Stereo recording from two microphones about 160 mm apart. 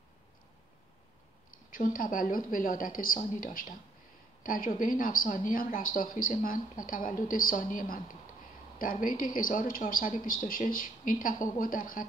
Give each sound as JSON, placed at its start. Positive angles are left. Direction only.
{"t": 1.7, "sound": "a woman's voice", "side_deg": 60}